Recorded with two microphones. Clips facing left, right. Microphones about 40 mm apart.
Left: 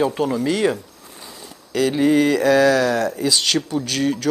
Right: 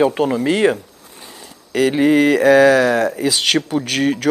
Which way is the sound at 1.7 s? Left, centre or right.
Right.